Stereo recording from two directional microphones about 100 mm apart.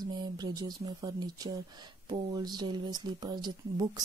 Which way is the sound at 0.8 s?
40° right (ahead or behind).